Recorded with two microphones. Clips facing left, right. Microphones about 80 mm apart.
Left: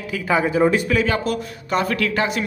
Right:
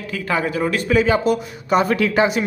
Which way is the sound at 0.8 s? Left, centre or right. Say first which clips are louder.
Right 4 dB; centre.